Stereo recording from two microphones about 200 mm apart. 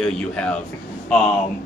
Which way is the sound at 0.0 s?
5° left (ahead or behind).